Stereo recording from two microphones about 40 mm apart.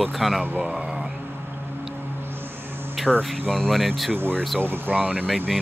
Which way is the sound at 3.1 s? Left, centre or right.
Centre.